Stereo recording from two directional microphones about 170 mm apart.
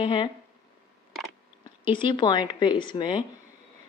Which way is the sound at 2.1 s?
25° left (ahead or behind).